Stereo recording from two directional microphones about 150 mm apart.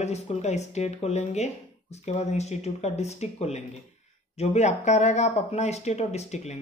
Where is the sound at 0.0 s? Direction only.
50° left (ahead or behind).